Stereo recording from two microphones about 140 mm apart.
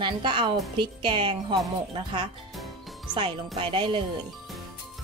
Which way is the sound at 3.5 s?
35° right (ahead or behind).